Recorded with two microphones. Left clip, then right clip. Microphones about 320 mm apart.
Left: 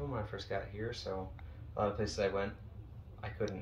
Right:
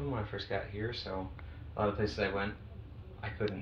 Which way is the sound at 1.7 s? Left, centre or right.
Centre.